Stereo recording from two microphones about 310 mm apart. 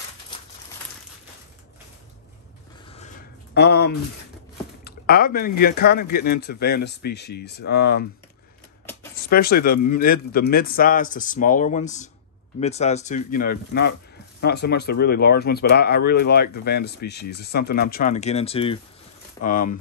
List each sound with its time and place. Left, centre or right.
3.5 s speech: left
9.3 s a man's voice: left